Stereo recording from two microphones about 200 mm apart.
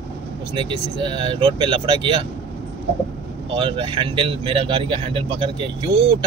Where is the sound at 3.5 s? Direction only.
25° right (ahead or behind).